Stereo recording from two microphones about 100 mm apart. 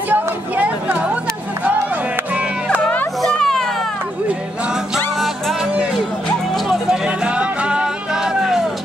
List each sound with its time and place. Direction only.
0.1 s speech: 15° right (ahead or behind)
2.8 s a sound: 15° left (ahead or behind)
3.2 s children playing: 5° left (ahead or behind)
4.9 s music: 5° right (ahead or behind)